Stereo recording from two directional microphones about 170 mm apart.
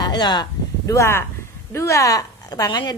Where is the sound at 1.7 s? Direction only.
15° left (ahead or behind).